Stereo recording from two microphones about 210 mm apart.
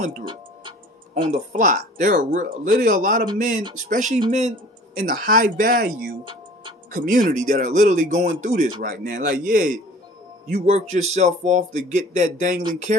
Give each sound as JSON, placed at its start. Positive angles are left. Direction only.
{"t": 0.2, "sound": "tick-tock", "side_deg": -25}
{"t": 1.2, "sound": "speech", "side_deg": -35}